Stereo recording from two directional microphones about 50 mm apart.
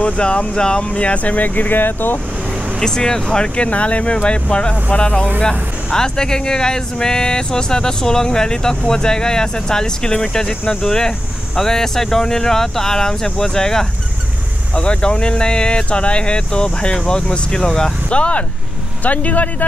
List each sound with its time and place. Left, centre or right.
0.0 s speech: left
2.8 s speech: centre; by 19.5 s left